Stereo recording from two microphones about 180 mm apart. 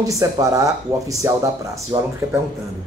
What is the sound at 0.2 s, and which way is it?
A man's voice, 20° right (ahead or behind).